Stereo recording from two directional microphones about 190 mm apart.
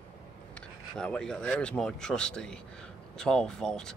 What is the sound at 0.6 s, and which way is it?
Speech, 5° left (ahead or behind).